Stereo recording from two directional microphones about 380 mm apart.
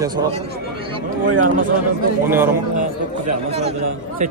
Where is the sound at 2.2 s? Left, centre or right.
Centre.